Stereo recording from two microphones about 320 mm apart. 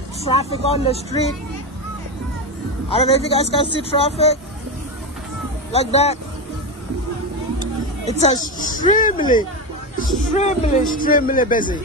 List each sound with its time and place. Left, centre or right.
0.2 s speech: centre
2.9 s speech: centre
5.7 s speech: centre
8.1 s speech: centre